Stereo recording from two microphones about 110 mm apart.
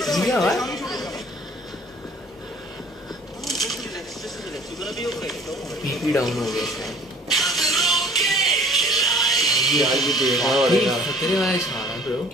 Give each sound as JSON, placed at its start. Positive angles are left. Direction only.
{"t": 0.0, "sound": "speech", "side_deg": 0}
{"t": 0.7, "sound": "chatter", "side_deg": 0}
{"t": 3.4, "sound": "a sound", "side_deg": 0}
{"t": 6.2, "sound": "speech", "side_deg": 0}
{"t": 7.3, "sound": "music", "side_deg": 0}
{"t": 9.7, "sound": "speech", "side_deg": 0}